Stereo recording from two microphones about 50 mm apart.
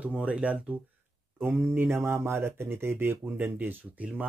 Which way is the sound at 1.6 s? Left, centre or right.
Right.